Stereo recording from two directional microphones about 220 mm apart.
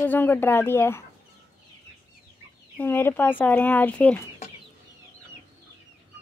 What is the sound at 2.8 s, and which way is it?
Speech, 10° left (ahead or behind).